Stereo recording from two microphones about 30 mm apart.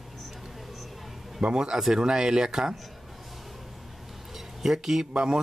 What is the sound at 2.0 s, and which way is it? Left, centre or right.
Speech, right.